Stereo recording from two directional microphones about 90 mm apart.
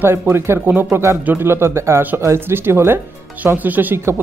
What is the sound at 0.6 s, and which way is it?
Speech, 15° right (ahead or behind).